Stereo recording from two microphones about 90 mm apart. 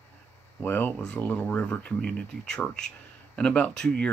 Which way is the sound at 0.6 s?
25° left (ahead or behind).